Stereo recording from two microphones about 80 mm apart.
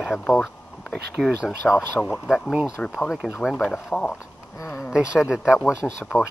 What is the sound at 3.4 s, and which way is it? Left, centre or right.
Speech, centre.